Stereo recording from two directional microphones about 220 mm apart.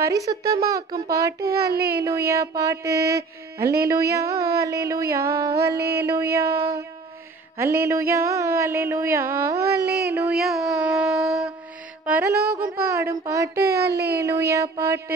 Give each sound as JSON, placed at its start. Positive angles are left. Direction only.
{"t": 0.0, "sound": "music", "side_deg": -15}
{"t": 1.7, "sound": "speech", "side_deg": -45}
{"t": 2.0, "sound": "music", "side_deg": -15}
{"t": 7.5, "sound": "a sound", "side_deg": -10}
{"t": 12.0, "sound": "music", "side_deg": -10}
{"t": 13.7, "sound": "speech", "side_deg": -45}
{"t": 14.1, "sound": "music", "side_deg": -15}